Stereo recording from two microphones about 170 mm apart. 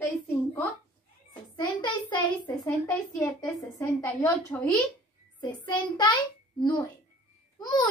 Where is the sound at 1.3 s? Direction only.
25° left (ahead or behind).